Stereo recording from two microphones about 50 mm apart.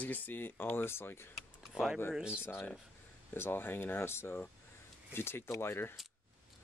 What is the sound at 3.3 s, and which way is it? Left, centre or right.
Speech, left.